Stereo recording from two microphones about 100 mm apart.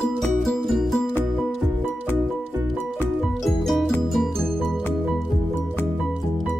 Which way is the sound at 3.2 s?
Centre (ahead or behind).